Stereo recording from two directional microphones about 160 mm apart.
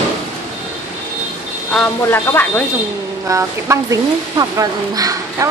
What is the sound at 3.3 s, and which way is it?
Speech, 20° right (ahead or behind).